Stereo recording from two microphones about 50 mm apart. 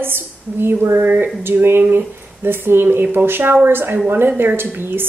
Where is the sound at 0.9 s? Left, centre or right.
Right.